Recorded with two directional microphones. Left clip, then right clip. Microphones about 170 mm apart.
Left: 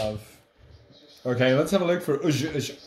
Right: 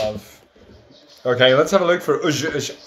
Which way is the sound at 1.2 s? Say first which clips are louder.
Right 8 dB; 20° left (ahead or behind).